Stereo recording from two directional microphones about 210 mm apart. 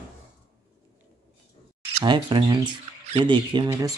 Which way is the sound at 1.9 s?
20° right (ahead or behind).